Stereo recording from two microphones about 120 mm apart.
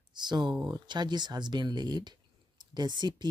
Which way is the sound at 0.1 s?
40° right (ahead or behind).